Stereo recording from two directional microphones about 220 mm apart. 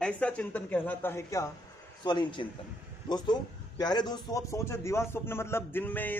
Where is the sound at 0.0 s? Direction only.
5° left (ahead or behind).